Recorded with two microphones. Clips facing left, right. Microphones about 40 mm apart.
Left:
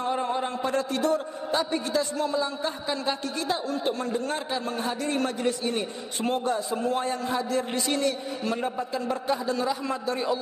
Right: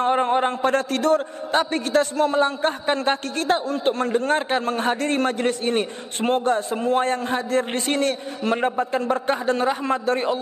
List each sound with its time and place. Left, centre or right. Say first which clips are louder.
0.0 s a man's voice: right 8 dB; right